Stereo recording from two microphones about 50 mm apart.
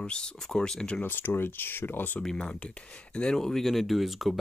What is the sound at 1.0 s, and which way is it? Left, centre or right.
Speech, left.